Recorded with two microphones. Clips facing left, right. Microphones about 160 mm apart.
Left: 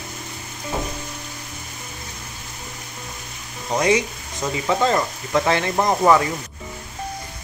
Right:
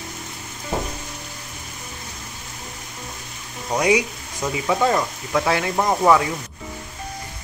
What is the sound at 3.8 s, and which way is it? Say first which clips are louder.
Speech: even; 10° right (ahead or behind).